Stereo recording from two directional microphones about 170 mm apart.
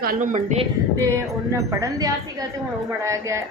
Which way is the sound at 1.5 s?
20° right (ahead or behind).